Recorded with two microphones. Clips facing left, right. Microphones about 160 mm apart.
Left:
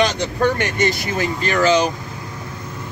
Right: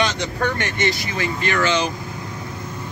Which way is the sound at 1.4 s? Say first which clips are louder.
Left 5 dB; 35° left (ahead or behind).